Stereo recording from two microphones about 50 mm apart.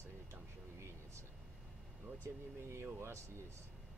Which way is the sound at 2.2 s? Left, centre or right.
Right.